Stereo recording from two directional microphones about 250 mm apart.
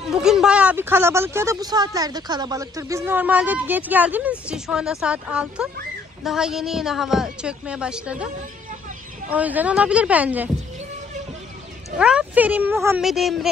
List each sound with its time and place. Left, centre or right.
0.1 s a woman's voice: centre
9.3 s a woman's voice: centre
12.0 s a woman's voice: centre